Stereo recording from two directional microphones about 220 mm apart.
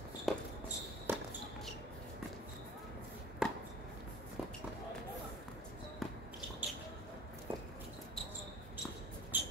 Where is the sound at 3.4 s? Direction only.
5° right (ahead or behind).